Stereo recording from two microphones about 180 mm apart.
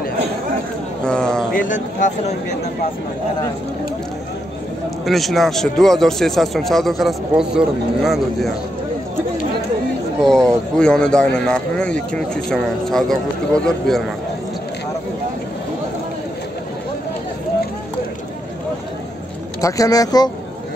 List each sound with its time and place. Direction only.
1.0 s a sound: 5° left (ahead or behind)
1.5 s speech: 45° left (ahead or behind)
5.0 s speech: centre (ahead or behind)
10.2 s speech: 5° left (ahead or behind)
19.6 s speech: 20° left (ahead or behind)